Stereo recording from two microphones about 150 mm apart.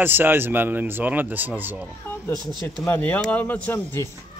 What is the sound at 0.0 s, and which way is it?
Speech, 15° right (ahead or behind).